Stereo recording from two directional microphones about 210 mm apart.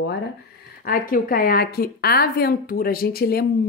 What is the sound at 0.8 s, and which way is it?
Speech, 45° left (ahead or behind).